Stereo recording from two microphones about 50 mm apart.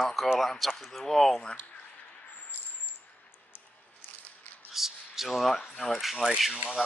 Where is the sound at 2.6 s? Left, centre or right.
Right.